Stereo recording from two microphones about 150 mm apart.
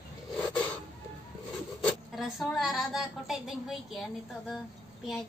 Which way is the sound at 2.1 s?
Centre (ahead or behind).